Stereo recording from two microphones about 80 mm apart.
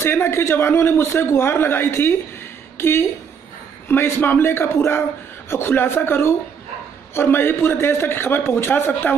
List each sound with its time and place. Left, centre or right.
0.0 s a man's voice: left